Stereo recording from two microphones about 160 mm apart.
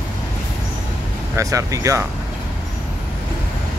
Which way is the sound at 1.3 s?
20° right (ahead or behind).